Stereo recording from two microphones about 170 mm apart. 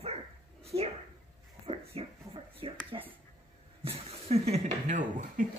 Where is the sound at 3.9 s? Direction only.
35° right (ahead or behind).